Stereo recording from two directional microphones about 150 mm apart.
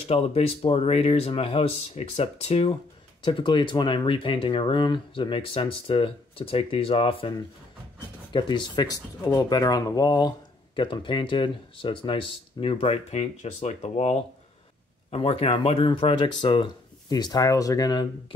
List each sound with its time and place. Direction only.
0.1 s speech: 40° left (ahead or behind)